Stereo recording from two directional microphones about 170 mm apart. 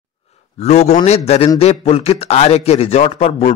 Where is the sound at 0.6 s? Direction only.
40° left (ahead or behind).